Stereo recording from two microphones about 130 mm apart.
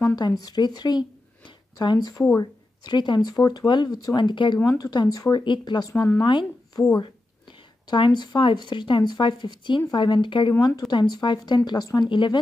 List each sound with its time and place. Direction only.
0.1 s a woman's voice: 30° left (ahead or behind)
7.9 s speech: 35° left (ahead or behind)